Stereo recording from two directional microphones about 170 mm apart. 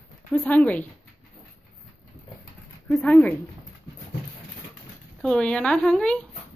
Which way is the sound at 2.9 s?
5° left (ahead or behind).